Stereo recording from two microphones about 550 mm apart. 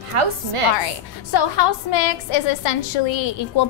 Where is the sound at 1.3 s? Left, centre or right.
Left.